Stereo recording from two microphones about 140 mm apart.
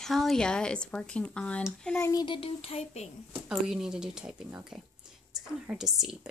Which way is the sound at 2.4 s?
45° left (ahead or behind).